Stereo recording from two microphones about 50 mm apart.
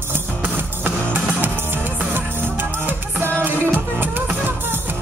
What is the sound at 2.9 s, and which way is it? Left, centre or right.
Music, right.